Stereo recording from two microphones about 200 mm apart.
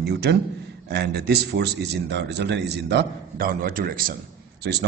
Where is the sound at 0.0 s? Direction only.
55° right (ahead or behind).